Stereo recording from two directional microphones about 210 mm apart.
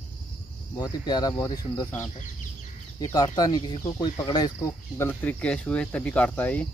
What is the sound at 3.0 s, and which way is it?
Speech, 20° left (ahead or behind).